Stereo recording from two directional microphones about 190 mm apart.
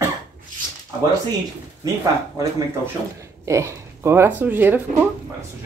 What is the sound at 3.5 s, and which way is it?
A woman's voice, 15° right (ahead or behind).